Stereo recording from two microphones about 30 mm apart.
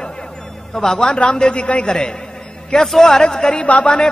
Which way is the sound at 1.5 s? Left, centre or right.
Left.